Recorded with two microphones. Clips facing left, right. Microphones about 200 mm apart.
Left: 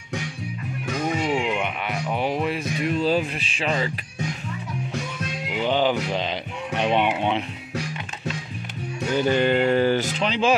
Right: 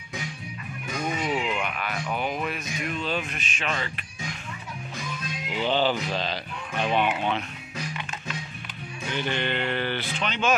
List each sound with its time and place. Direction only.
1.1 s a sound: 30° left (ahead or behind)
1.6 s speech: 25° left (ahead or behind)
5.6 s speech: 15° left (ahead or behind)
9.1 s speech: 40° left (ahead or behind)